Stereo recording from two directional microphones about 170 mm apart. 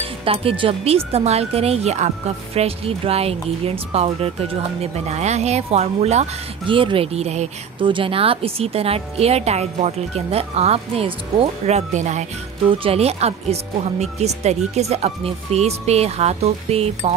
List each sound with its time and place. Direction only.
0.0 s speech: 35° right (ahead or behind)
12.6 s speech: 30° right (ahead or behind)